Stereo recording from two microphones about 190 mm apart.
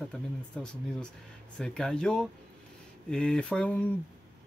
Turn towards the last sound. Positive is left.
turn(degrees=5)  # may be behind; listen again after turning